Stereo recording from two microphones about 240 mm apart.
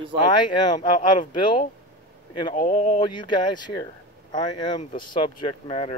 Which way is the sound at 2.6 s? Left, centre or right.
Left.